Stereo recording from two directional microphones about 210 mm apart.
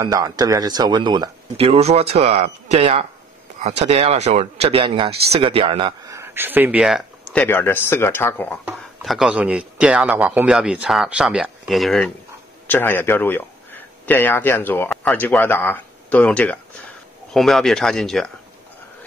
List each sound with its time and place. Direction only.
0.0 s speech: 15° right (ahead or behind); by 8.5 s 10° left (ahead or behind)
9.0 s a man's voice: centre (ahead or behind)